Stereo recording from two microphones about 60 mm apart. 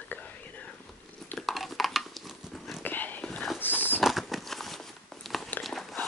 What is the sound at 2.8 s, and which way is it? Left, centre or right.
Whispering, left.